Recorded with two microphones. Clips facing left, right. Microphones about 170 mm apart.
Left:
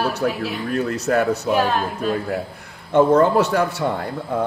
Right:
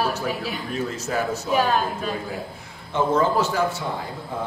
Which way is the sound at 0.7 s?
65° left (ahead or behind).